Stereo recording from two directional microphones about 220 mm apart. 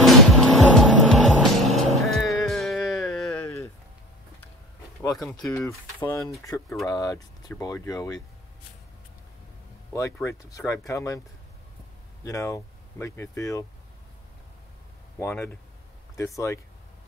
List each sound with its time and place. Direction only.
0.0 s music: centre (ahead or behind)
5.7 s speech: 15° left (ahead or behind)
9.9 s speech: 10° left (ahead or behind)
12.3 s speech: 15° left (ahead or behind)
15.1 s speech: 10° left (ahead or behind)